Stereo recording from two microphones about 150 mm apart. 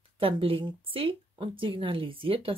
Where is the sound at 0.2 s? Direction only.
40° right (ahead or behind).